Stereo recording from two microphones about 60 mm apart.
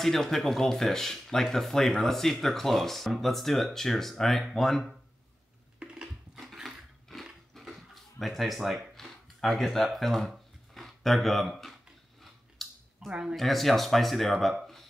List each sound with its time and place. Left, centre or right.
0.0 s speech: centre
5.8 s a sound: centre
6.3 s dog: centre
7.5 s a sound: centre
12.2 s scissors: centre
13.1 s speech: centre
13.4 s speech: centre